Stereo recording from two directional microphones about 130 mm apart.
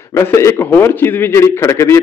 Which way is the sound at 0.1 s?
20° left (ahead or behind).